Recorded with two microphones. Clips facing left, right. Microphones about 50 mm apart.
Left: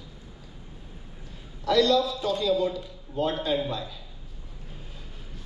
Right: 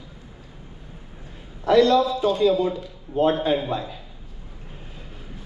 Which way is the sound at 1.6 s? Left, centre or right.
Right.